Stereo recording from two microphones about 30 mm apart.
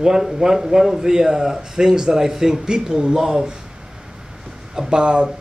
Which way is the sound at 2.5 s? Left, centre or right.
Right.